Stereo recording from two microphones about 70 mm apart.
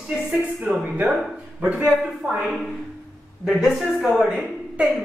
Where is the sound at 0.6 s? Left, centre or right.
Right.